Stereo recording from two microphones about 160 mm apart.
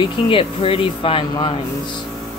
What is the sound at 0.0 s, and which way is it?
Speech, 35° left (ahead or behind).